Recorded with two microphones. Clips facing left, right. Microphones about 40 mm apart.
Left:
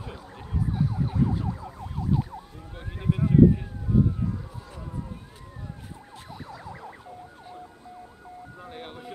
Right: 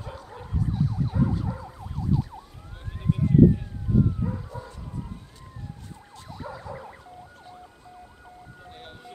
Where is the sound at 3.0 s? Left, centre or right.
Left.